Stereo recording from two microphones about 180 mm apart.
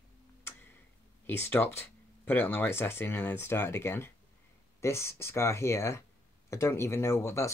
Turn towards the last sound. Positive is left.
turn(degrees=15)  # may be behind; listen again after turning